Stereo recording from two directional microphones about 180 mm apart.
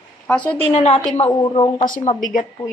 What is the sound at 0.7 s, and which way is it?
A woman's voice, 35° left (ahead or behind).